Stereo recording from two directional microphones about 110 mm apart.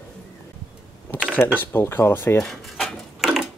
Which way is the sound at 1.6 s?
20° left (ahead or behind).